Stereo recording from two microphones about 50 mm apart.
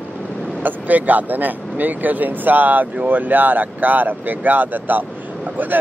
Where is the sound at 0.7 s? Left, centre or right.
Right.